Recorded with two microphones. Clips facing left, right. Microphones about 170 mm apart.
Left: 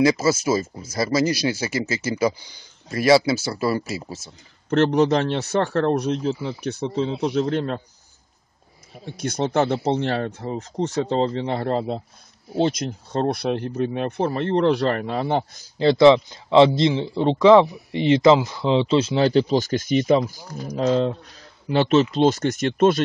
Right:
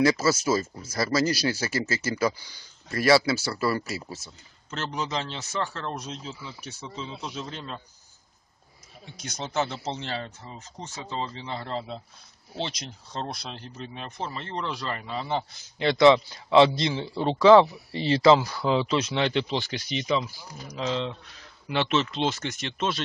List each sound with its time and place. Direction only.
0.0 s speech: 15° left (ahead or behind)
4.6 s speech: 60° left (ahead or behind)
9.0 s speech: 55° left (ahead or behind)
15.8 s speech: 25° left (ahead or behind); by 23.0 s 50° left (ahead or behind)